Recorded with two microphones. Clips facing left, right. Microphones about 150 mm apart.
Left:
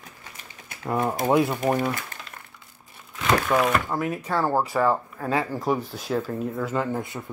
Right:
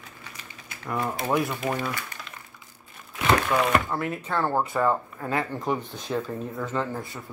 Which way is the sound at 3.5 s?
5° left (ahead or behind).